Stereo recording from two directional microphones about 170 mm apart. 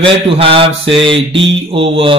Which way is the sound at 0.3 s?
35° right (ahead or behind).